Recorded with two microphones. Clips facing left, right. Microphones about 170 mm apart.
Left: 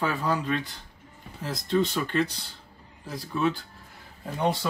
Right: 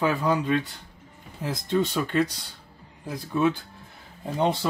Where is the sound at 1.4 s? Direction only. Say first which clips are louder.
Even; 5° right (ahead or behind).